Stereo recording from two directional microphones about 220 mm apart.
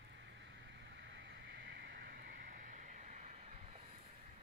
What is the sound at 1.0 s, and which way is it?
Vehicle, 50° right (ahead or behind).